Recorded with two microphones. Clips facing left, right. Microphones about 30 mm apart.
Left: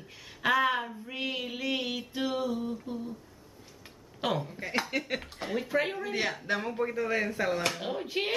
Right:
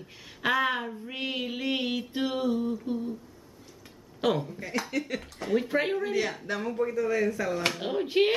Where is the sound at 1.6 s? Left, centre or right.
Centre.